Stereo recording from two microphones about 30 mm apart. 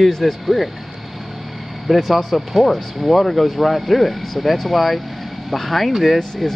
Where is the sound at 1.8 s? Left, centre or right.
Centre.